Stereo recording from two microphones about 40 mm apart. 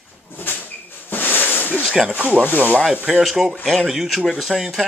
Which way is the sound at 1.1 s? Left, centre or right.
Left.